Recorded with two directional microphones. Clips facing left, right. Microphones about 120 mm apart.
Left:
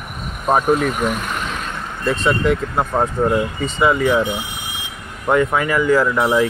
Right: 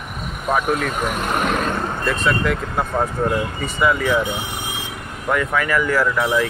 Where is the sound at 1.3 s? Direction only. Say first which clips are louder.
Right 6 dB; 55° right (ahead or behind).